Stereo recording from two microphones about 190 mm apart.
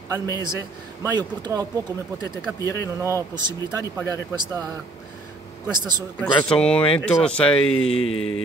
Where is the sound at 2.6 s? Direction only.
15° left (ahead or behind).